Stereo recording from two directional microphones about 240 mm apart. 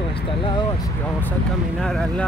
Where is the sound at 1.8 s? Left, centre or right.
Centre.